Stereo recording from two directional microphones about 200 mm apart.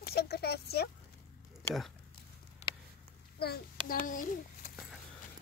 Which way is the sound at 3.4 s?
50° left (ahead or behind).